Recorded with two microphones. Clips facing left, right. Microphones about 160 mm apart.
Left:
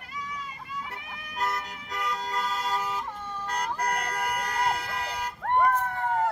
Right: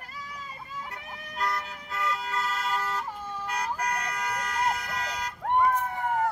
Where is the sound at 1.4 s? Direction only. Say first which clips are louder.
Even; 20° left (ahead or behind).